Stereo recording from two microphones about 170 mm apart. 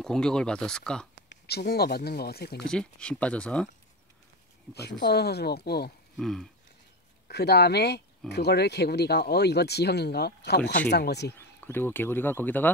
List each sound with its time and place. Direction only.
0.0 s speech: 5° left (ahead or behind)
1.5 s speech: 65° left (ahead or behind)
2.7 s speech: 5° left (ahead or behind)
5.0 s speech: 70° left (ahead or behind)
6.1 s a sound: centre (ahead or behind)
7.2 s speech: 75° left (ahead or behind)
11.3 s speech: 10° left (ahead or behind)